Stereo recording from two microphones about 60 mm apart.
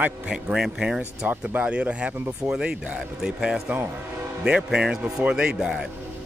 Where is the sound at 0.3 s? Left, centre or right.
Centre.